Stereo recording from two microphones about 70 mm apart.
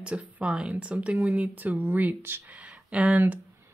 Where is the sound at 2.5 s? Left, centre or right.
Centre.